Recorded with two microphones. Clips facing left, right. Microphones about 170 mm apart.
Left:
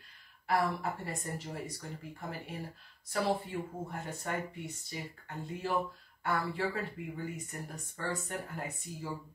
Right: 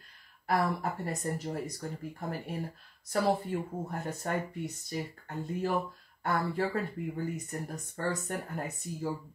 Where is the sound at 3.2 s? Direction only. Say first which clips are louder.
Right 3 dB; 40° right (ahead or behind).